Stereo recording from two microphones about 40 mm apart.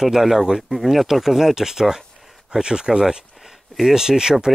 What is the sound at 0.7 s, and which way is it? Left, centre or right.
Speech, centre.